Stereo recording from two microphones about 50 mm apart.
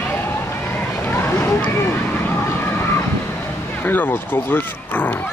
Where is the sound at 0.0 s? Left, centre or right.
Left.